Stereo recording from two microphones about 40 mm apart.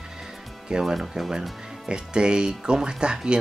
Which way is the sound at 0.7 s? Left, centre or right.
Centre.